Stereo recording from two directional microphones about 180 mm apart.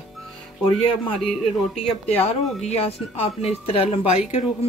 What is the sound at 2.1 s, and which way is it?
A woman's voice, 35° left (ahead or behind).